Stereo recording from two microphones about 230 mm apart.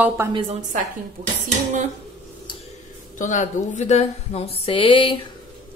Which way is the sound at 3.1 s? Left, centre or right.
Left.